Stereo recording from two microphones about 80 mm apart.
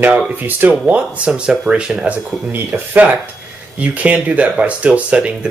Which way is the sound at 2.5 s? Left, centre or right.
Right.